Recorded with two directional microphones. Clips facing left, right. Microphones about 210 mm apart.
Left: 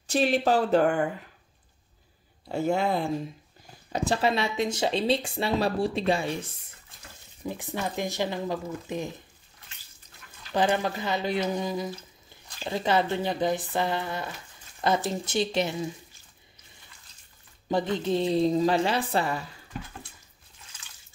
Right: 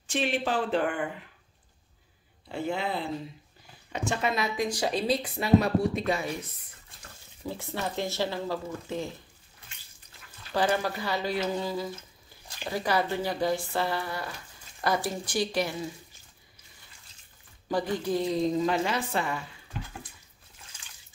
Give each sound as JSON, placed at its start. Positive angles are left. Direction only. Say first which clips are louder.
{"t": 0.0, "sound": "a woman's voice", "louder": "left 5 dB", "side_deg": 40}
{"t": 2.4, "sound": "speech", "louder": "left 5 dB", "side_deg": 45}
{"t": 3.9, "sound": "speech", "louder": "left 4 dB", "side_deg": 35}
{"t": 7.4, "sound": "speech", "louder": "left 1 dB", "side_deg": 15}
{"t": 10.5, "sound": "speech", "louder": "left 2 dB", "side_deg": 20}
{"t": 17.6, "sound": "a woman's voice", "louder": "left 2 dB", "side_deg": 25}